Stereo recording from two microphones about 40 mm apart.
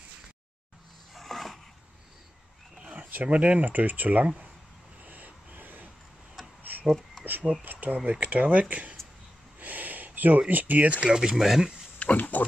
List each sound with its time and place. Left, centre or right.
1.1 s a sound: centre
2.8 s roaring cats: right
3.1 s speech: right
5.0 s vehicle: right
6.6 s a sound: right
7.2 s speech: right
9.6 s a sound: right
10.5 s speech: right
11.1 s speech: centre
12.0 s speech: left